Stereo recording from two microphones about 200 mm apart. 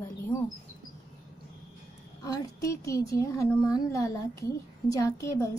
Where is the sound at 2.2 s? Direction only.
20° left (ahead or behind).